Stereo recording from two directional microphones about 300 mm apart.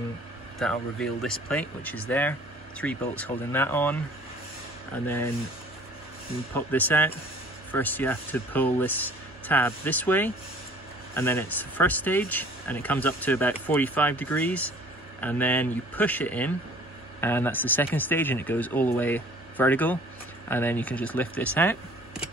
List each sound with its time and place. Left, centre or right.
0.6 s speech: centre
5.0 s speech: centre
6.5 s speech: centre